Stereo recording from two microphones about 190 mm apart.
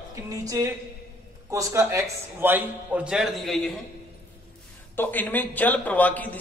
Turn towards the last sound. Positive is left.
turn(degrees=10)  # may be behind; listen again after turning